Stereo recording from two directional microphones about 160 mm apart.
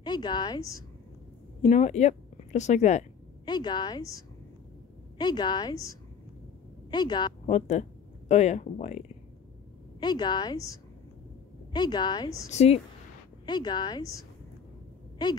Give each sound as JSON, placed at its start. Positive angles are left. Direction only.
{"t": 0.0, "sound": "a woman's voice", "side_deg": 25}
{"t": 1.6, "sound": "speech", "side_deg": 45}
{"t": 3.4, "sound": "a woman's voice", "side_deg": 30}
{"t": 5.2, "sound": "a woman's voice", "side_deg": 25}
{"t": 7.4, "sound": "speech", "side_deg": 45}
{"t": 9.9, "sound": "a woman's voice", "side_deg": 25}
{"t": 12.4, "sound": "a woman's voice", "side_deg": 40}
{"t": 13.5, "sound": "a woman's voice", "side_deg": 25}